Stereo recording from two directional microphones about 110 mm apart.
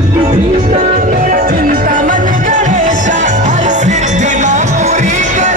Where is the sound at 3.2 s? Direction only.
90° right.